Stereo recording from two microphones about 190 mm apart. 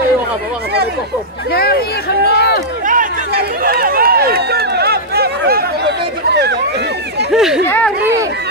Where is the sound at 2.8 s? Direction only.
45° right (ahead or behind); by 7.3 s 60° right (ahead or behind).